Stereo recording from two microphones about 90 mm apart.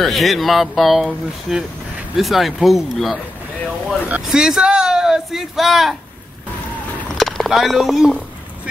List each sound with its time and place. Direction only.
0.0 s speech: centre (ahead or behind)
4.3 s speech: 5° right (ahead or behind)
7.2 s speech: centre (ahead or behind)